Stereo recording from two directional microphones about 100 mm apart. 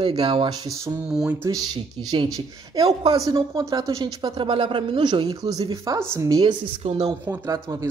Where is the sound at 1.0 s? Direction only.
10° right (ahead or behind).